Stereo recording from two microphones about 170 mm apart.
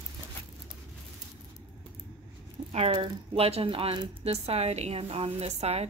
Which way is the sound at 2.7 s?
35° right (ahead or behind).